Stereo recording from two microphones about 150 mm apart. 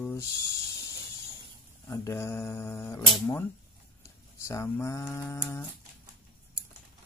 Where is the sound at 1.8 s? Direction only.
20° left (ahead or behind).